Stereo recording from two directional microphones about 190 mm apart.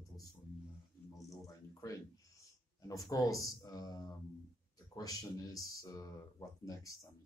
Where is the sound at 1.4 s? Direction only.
15° left (ahead or behind).